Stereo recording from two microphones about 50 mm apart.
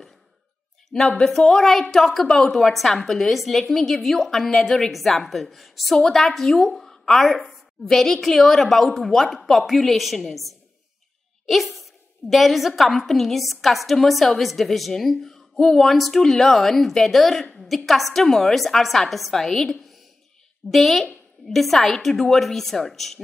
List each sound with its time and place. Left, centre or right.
0.9 s a woman's voice: centre
2.2 s a woman's voice: centre
2.5 s a woman's voice: centre